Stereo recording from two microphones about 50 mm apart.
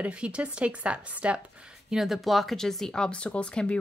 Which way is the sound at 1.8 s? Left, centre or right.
Centre.